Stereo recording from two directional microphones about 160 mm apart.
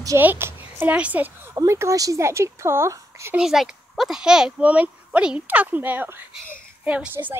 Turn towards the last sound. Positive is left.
turn(degrees=-10)  # may be behind; listen again after turning